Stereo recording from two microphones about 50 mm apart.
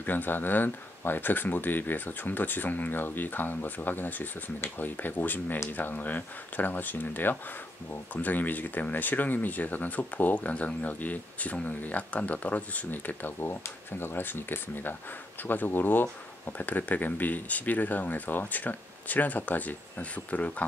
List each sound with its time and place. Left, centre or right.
0.0 s speech: left
13.5 s speech: left